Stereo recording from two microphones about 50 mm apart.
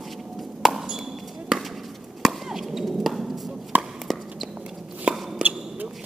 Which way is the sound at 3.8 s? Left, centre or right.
Centre.